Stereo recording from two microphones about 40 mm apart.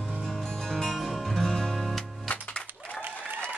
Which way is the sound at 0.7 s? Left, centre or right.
Centre.